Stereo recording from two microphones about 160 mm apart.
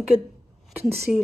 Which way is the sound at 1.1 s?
5° right (ahead or behind).